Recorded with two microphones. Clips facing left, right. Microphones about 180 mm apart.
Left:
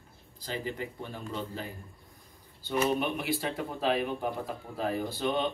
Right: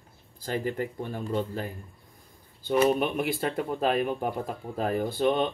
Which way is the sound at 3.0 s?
50° right (ahead or behind).